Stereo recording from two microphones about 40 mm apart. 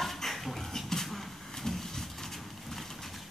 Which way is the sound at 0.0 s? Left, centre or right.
Centre.